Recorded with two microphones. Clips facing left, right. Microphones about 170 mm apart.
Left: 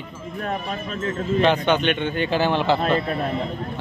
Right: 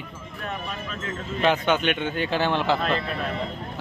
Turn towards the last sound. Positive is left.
turn(degrees=30)  # may be behind; listen again after turning